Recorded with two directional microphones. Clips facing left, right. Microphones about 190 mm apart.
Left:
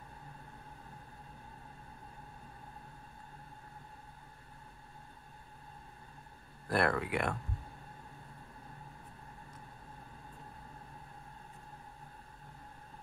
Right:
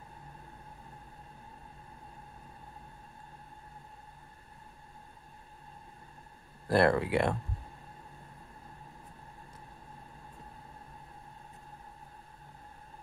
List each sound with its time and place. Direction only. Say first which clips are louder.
6.7 s speech: right 6 dB; 30° right (ahead or behind)